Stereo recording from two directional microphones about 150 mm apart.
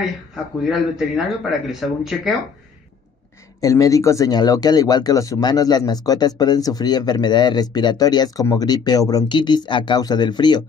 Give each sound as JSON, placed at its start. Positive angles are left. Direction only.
{"t": 0.7, "sound": "speech", "side_deg": 0}
{"t": 3.6, "sound": "speech", "side_deg": 20}